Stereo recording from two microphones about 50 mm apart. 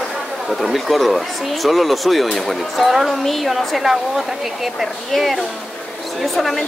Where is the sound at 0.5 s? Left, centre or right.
Centre.